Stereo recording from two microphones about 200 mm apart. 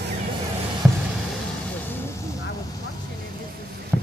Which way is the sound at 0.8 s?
Centre (ahead or behind).